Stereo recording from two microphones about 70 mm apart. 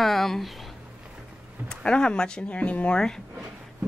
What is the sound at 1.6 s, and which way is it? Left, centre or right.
A woman's voice, centre.